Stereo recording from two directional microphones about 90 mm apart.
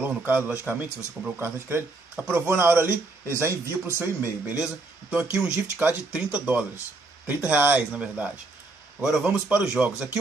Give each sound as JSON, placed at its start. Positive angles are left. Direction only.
{"t": 0.0, "sound": "speech", "side_deg": -20}
{"t": 1.4, "sound": "speech", "side_deg": -25}
{"t": 2.1, "sound": "speech", "side_deg": -15}
{"t": 2.4, "sound": "speech", "side_deg": -25}
{"t": 7.9, "sound": "speech", "side_deg": -15}